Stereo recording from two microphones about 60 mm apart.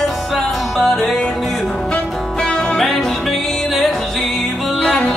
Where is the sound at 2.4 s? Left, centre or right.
Centre.